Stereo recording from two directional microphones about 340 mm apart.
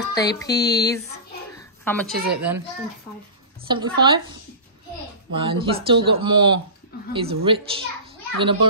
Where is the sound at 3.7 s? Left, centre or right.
Centre.